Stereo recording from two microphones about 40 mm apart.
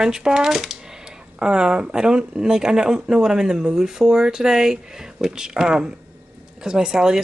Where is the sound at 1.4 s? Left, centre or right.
Centre.